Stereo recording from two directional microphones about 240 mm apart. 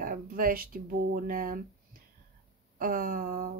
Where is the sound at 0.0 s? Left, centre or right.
Right.